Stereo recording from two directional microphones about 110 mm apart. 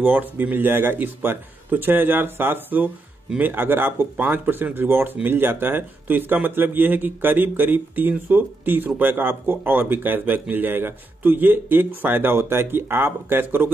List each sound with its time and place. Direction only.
0.0 s speech: 15° right (ahead or behind)